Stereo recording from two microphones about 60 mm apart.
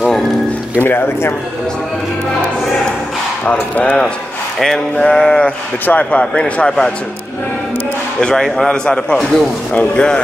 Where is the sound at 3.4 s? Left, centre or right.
Left.